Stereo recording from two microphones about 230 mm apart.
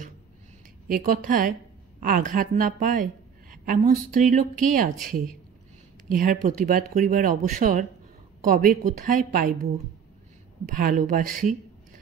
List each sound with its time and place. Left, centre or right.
0.8 s a woman's voice: right
10.8 s a woman's voice: right